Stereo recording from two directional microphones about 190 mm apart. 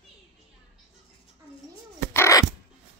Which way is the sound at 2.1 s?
15° left (ahead or behind).